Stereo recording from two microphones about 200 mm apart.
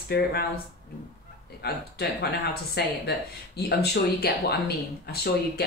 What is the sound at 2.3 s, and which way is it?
Speech, 55° left (ahead or behind).